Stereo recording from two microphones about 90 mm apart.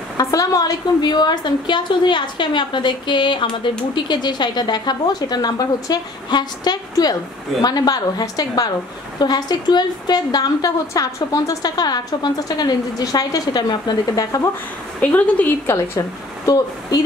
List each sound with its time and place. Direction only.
0.2 s a woman's voice: 40° left (ahead or behind)
15.0 s a woman's voice: 15° left (ahead or behind)